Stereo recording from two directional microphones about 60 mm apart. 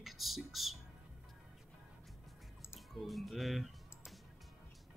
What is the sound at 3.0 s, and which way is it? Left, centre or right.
Speech, centre.